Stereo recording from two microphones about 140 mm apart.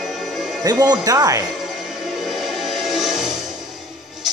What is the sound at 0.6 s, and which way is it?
Speech, 25° right (ahead or behind).